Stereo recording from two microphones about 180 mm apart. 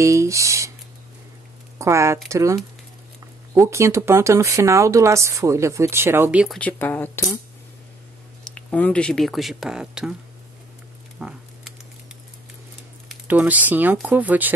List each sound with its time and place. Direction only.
0.0 s speech: 15° right (ahead or behind)
1.8 s speech: 15° right (ahead or behind)
6.6 s speech: 10° left (ahead or behind)
8.5 s speech: 5° left (ahead or behind)
11.1 s a sound: 5° right (ahead or behind)
13.1 s speech: 10° right (ahead or behind)